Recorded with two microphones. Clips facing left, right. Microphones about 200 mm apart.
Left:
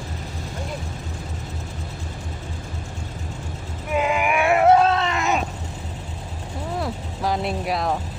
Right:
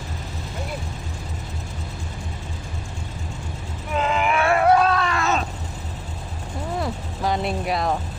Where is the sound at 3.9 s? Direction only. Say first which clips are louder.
Left 1 dB; 10° left (ahead or behind).